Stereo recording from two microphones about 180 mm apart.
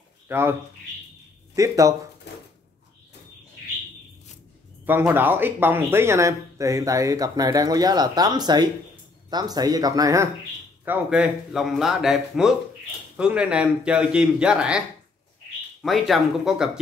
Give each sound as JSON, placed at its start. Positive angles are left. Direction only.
{"t": 0.3, "sound": "speech", "side_deg": -10}
{"t": 4.8, "sound": "speech", "side_deg": -10}
{"t": 10.9, "sound": "speech", "side_deg": -5}
{"t": 15.8, "sound": "speech", "side_deg": 0}